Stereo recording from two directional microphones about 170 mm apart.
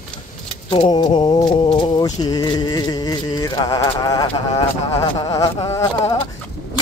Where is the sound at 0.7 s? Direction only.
30° left (ahead or behind).